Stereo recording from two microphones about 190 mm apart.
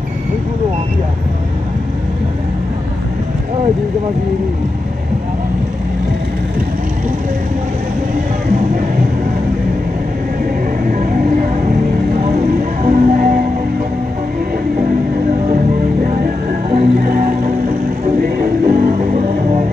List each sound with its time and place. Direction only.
10.9 s music: 45° right (ahead or behind)
12.8 s music: 45° right (ahead or behind)
16.7 s music: 50° right (ahead or behind)